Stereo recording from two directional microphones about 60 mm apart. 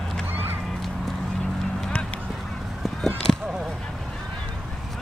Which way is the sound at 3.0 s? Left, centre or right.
Centre.